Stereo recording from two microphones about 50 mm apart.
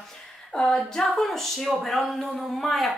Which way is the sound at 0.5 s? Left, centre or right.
Centre.